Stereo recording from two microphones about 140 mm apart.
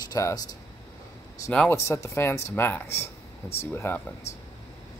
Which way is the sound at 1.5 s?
10° left (ahead or behind).